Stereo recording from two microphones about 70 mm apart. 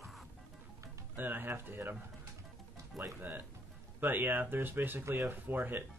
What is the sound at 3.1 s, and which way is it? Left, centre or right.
Speech, right.